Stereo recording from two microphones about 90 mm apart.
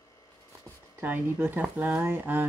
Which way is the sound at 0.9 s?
20° right (ahead or behind).